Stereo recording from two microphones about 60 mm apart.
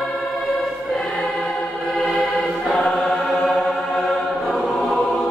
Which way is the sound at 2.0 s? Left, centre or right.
Centre.